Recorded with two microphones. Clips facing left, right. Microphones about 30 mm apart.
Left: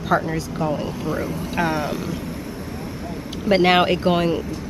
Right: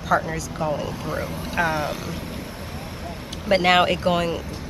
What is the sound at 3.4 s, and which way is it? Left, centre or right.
Speech, centre.